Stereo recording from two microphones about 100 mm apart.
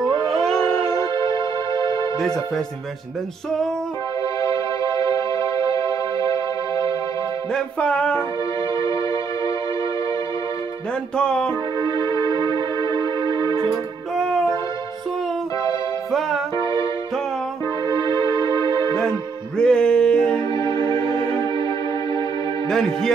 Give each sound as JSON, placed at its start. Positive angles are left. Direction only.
{"t": 0.3, "sound": "howl", "side_deg": 5}
{"t": 1.1, "sound": "music", "side_deg": -50}
{"t": 4.4, "sound": "music", "side_deg": 30}
{"t": 7.5, "sound": "music", "side_deg": 10}
{"t": 11.1, "sound": "music", "side_deg": 10}
{"t": 11.8, "sound": "music", "side_deg": -50}
{"t": 14.1, "sound": "music", "side_deg": 0}
{"t": 16.1, "sound": "music", "side_deg": 0}
{"t": 17.8, "sound": "music", "side_deg": -50}
{"t": 18.9, "sound": "music", "side_deg": 10}
{"t": 20.5, "sound": "music", "side_deg": 40}
{"t": 22.7, "sound": "music", "side_deg": 5}